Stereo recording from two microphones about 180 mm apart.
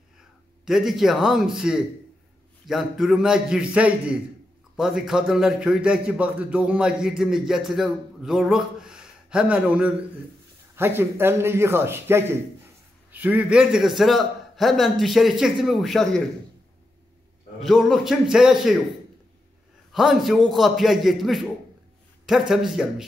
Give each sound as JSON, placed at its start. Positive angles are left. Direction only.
{"t": 0.7, "sound": "a man's voice", "side_deg": 0}
{"t": 17.6, "sound": "a man's voice", "side_deg": 0}
{"t": 19.9, "sound": "a man's voice", "side_deg": 0}
{"t": 22.5, "sound": "a man's voice", "side_deg": 0}